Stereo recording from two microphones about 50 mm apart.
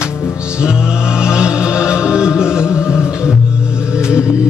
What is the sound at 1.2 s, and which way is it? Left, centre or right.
Music, centre.